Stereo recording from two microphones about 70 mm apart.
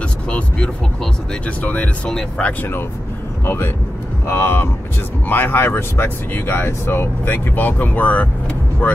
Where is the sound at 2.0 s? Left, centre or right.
Centre.